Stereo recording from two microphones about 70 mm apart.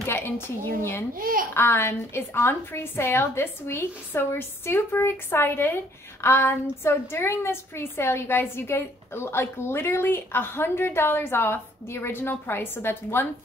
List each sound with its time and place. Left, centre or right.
0.1 s a woman's voice: left